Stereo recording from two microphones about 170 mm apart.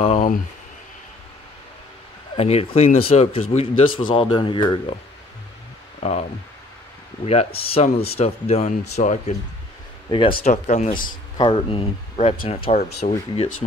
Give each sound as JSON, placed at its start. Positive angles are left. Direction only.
{"t": 0.0, "sound": "a sound", "side_deg": 35}
{"t": 2.3, "sound": "speech", "side_deg": 35}
{"t": 5.9, "sound": "speech", "side_deg": 40}
{"t": 7.2, "sound": "speech", "side_deg": 35}
{"t": 10.0, "sound": "speech", "side_deg": 30}
{"t": 10.4, "sound": "speech", "side_deg": 45}
{"t": 11.3, "sound": "speech", "side_deg": 30}